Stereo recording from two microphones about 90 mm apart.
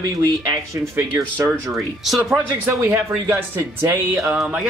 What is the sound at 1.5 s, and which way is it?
Speech, 5° right (ahead or behind).